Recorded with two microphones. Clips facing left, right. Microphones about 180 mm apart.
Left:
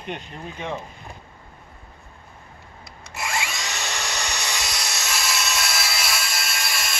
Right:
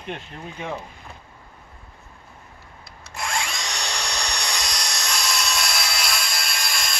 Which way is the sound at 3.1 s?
5° left (ahead or behind).